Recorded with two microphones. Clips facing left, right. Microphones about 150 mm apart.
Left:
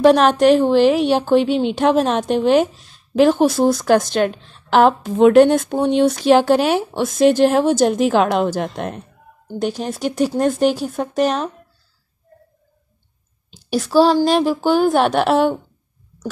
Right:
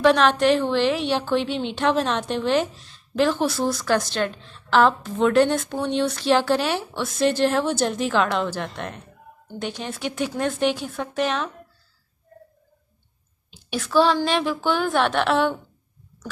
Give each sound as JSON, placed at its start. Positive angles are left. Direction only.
{"t": 0.0, "sound": "a woman's voice", "side_deg": 45}
{"t": 13.5, "sound": "a woman's voice", "side_deg": 40}